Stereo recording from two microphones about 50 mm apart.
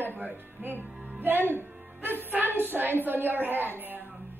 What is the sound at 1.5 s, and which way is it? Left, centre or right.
Music, right.